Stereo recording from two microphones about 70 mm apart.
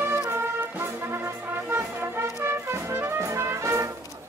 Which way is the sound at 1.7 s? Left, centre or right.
Right.